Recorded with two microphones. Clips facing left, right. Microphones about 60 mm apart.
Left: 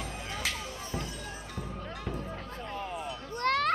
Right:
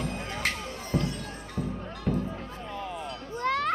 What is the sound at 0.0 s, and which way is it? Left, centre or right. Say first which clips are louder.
Music: right 5 dB; right.